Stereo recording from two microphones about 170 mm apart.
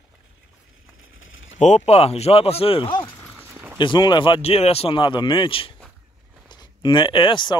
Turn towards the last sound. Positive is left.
turn(degrees=30)  # may be behind; listen again after turning